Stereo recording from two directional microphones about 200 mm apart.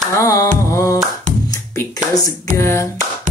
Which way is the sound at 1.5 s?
15° left (ahead or behind).